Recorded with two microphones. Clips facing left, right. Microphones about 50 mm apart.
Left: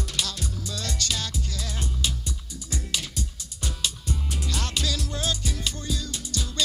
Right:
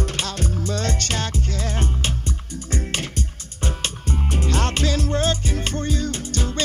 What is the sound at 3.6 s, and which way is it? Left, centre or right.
Music, right.